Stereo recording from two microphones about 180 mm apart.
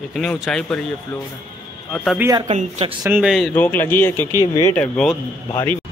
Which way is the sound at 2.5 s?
40° right (ahead or behind).